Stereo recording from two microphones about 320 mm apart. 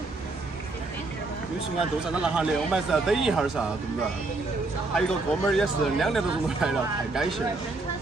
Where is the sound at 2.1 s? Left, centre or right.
Centre.